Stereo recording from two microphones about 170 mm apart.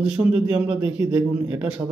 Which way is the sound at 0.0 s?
5° right (ahead or behind).